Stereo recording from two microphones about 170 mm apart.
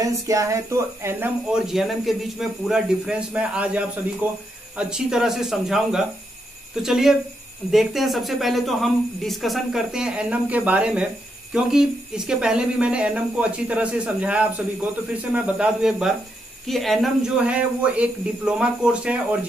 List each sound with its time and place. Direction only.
0.0 s speech: 20° right (ahead or behind)
1.5 s speech: centre (ahead or behind)